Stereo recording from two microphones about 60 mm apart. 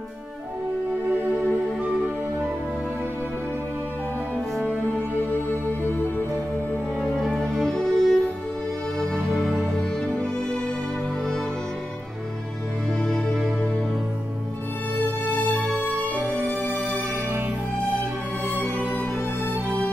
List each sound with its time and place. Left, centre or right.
4.6 s music: centre
5.5 s music: left
7.0 s music: centre
9.4 s music: centre
13.0 s music: centre
16.2 s music: right
18.5 s music: left